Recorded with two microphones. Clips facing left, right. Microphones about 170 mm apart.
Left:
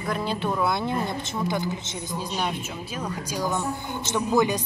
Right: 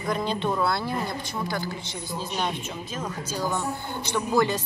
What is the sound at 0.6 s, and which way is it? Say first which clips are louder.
A woman's voice: left 2 dB; 20° left (ahead or behind).